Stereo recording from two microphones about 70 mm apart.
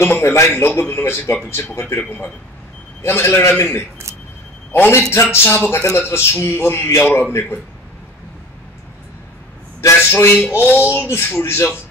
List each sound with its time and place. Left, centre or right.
0.0 s a man's voice: left
3.0 s a man's voice: left
9.8 s a man's voice: left